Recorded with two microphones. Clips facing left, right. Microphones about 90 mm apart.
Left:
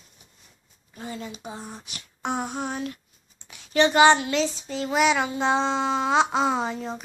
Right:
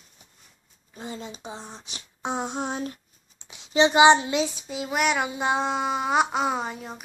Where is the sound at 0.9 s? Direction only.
20° right (ahead or behind).